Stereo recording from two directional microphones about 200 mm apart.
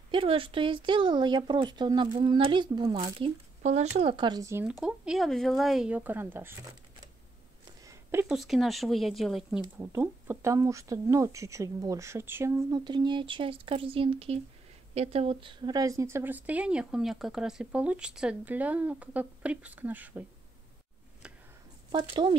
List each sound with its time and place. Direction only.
0.1 s speech: 25° right (ahead or behind); by 6.6 s 10° right (ahead or behind)
7.8 s a woman's voice: 15° right (ahead or behind)
21.9 s speech: 25° right (ahead or behind)